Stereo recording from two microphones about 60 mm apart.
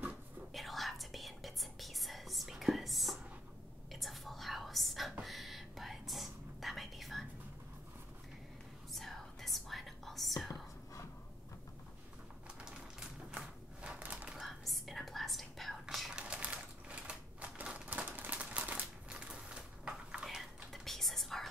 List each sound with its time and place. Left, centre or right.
0.5 s whispering: centre
8.9 s whispering: centre
13.4 s a sound: centre
14.4 s whispering: centre
16.1 s typewriter: centre
20.2 s whispering: centre